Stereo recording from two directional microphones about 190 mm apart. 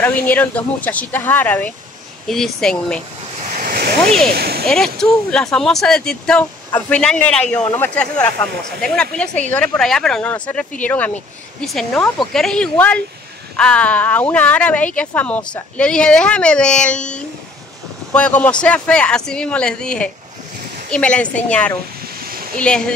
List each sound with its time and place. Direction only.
0.0 s speech: 10° left (ahead or behind)
3.4 s waves: 45° right (ahead or behind)
4.3 s speech: 55° right (ahead or behind)
4.6 s speech: centre (ahead or behind)
18.1 s speech: 5° left (ahead or behind)
22.2 s a sound: 50° right (ahead or behind)
22.6 s speech: 5° left (ahead or behind)